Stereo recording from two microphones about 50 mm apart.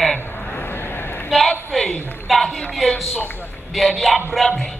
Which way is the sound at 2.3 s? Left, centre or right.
Centre.